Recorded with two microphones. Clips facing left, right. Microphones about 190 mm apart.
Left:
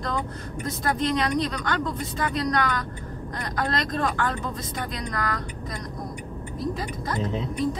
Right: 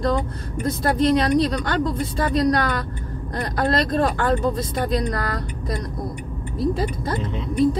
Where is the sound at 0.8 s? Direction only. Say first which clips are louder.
Right 6 dB; 35° right (ahead or behind).